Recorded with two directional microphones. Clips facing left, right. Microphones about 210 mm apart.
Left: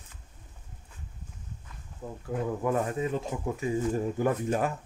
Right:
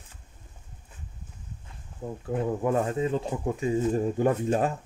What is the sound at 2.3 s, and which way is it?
Speech, 25° right (ahead or behind).